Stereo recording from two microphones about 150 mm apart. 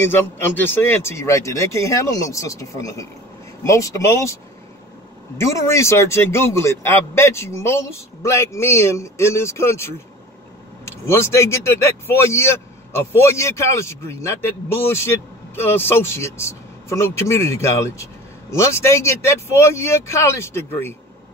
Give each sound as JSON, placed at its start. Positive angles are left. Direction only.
{"t": 0.0, "sound": "speech", "side_deg": 15}
{"t": 5.5, "sound": "speech", "side_deg": 20}
{"t": 10.9, "sound": "speech", "side_deg": 15}